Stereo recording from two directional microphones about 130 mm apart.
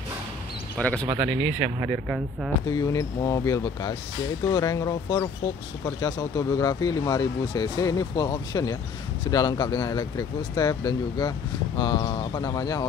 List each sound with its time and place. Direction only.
0.7 s speech: 10° left (ahead or behind)
1.0 s speech: 30° right (ahead or behind)
1.8 s speech: 5° right (ahead or behind)
2.7 s speech: 25° left (ahead or behind)